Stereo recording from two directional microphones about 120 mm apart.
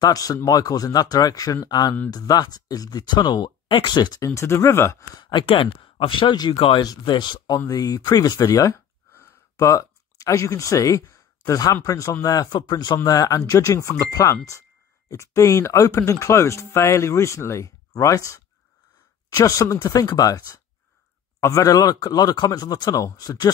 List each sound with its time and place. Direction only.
0.0 s speech: 30° left (ahead or behind)
5.2 s speech: 45° left (ahead or behind); by 23.5 s 30° left (ahead or behind)